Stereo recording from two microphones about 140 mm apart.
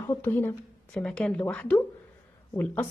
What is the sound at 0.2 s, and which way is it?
Speech, 15° left (ahead or behind).